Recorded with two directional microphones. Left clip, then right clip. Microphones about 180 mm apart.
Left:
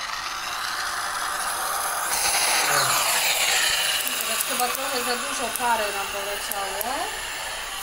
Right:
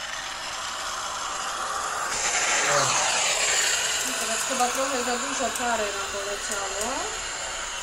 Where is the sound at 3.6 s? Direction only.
15° right (ahead or behind).